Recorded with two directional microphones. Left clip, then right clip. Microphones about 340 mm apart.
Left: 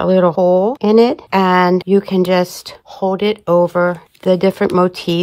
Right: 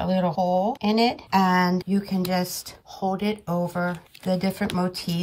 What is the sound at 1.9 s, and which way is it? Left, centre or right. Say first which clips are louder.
Speech: left 13 dB; left.